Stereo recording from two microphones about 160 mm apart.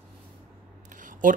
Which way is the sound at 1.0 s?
55° right (ahead or behind).